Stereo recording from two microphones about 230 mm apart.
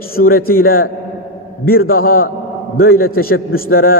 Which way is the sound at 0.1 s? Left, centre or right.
Left.